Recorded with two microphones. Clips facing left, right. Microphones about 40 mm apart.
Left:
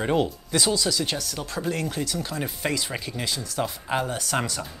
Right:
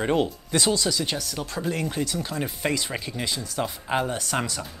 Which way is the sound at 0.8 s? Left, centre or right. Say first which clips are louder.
Even; centre.